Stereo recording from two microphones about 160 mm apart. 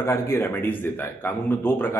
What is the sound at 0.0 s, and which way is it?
A man's voice, 15° left (ahead or behind).